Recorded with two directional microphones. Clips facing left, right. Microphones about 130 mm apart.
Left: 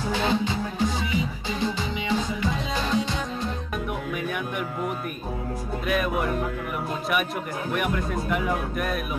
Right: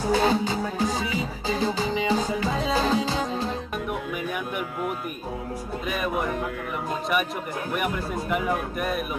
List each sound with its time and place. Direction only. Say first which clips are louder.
0.0 s music: right 3 dB; 40° right (ahead or behind)
5.9 s speech: left 2 dB; centre (ahead or behind)
7.7 s speech: left 1 dB; 5° right (ahead or behind)